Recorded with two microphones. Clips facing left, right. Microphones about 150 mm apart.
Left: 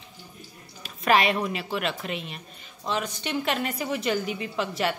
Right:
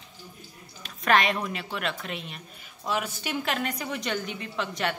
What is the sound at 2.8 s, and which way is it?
A woman's voice, 10° right (ahead or behind).